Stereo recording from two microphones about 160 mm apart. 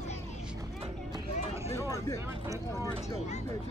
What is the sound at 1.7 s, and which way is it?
Speech, 20° left (ahead or behind).